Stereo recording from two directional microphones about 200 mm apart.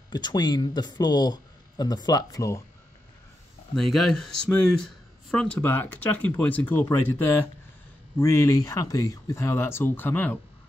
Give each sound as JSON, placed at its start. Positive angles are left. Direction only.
{"t": 0.1, "sound": "speech", "side_deg": 20}
{"t": 3.7, "sound": "speech", "side_deg": 0}
{"t": 8.2, "sound": "speech", "side_deg": 15}